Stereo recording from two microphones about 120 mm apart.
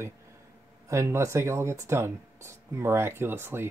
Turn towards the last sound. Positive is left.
turn(degrees=-20)  # may be behind; listen again after turning